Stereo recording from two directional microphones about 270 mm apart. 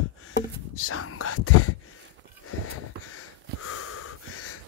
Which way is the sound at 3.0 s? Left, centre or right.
Left.